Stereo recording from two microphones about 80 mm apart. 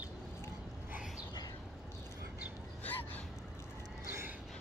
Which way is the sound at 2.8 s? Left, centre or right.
Centre.